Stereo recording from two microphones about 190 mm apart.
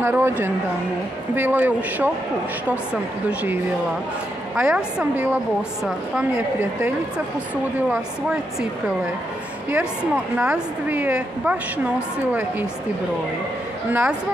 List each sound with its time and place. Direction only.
0.0 s a woman's voice: 10° right (ahead or behind)
4.6 s a woman's voice: 5° right (ahead or behind)
7.9 s a woman's voice: 5° right (ahead or behind)
13.8 s a woman's voice: 10° right (ahead or behind)